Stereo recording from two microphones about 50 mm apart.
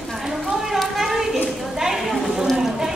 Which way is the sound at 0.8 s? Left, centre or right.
Centre.